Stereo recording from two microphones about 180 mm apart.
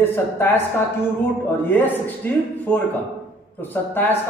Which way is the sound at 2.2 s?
10° left (ahead or behind).